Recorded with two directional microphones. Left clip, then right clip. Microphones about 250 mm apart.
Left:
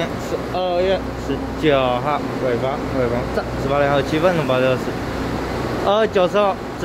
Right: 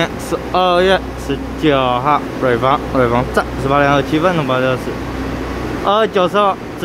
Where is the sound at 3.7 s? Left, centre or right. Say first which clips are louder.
Right 4 dB; centre.